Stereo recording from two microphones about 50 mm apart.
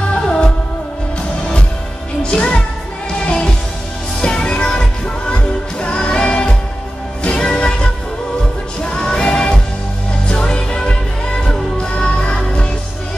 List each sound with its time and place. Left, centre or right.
0.1 s music: centre
2.3 s music: centre